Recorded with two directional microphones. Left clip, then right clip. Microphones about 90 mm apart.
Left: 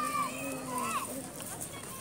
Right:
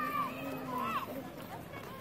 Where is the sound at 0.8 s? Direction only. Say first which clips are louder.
Left 1 dB; 55° left (ahead or behind).